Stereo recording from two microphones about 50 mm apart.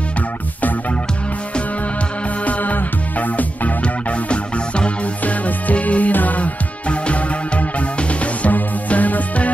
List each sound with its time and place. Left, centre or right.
2.4 s music: left